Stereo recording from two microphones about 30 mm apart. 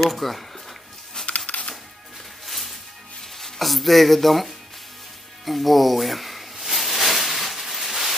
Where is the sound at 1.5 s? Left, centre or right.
Left.